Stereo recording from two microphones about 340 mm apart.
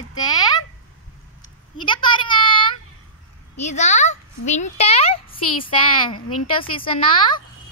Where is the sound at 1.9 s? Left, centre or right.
Centre.